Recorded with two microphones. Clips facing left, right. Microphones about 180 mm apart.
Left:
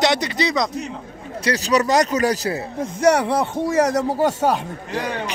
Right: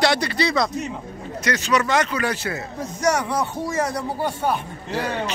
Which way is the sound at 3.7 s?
75° left (ahead or behind).